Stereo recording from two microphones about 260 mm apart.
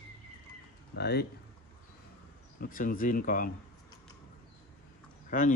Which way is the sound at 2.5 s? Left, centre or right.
Left.